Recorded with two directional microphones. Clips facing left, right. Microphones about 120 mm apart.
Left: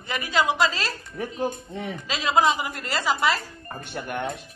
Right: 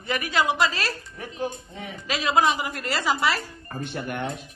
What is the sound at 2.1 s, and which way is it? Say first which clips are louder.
A woman's voice: even; 25° left (ahead or behind).